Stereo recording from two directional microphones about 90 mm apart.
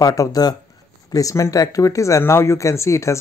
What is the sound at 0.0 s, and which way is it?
Speech, 40° left (ahead or behind).